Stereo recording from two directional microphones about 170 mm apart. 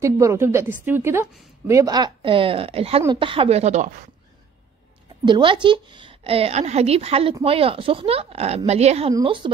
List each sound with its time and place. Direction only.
0.0 s a woman's voice: 15° right (ahead or behind); by 4.1 s 50° right (ahead or behind)
5.2 s a woman's voice: 30° right (ahead or behind)